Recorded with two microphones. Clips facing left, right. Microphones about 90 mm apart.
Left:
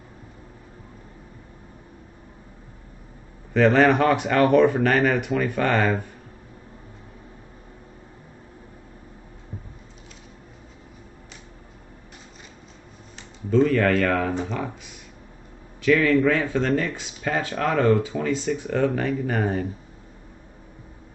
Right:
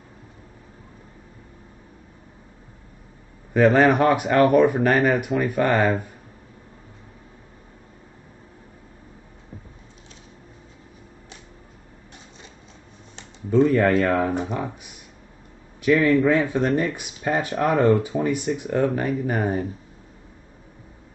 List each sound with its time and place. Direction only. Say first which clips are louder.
3.5 s speech: right 1 dB; 10° right (ahead or behind)
13.5 s a man's voice: right 1 dB; 15° right (ahead or behind)